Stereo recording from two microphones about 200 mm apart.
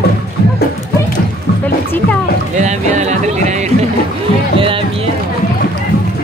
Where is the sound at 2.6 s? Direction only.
35° right (ahead or behind).